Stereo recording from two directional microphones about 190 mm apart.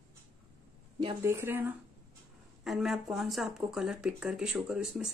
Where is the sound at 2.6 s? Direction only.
Centre (ahead or behind).